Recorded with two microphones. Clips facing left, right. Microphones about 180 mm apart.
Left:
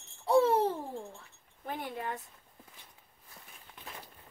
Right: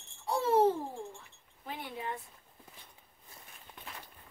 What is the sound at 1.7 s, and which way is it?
Speech, 50° left (ahead or behind).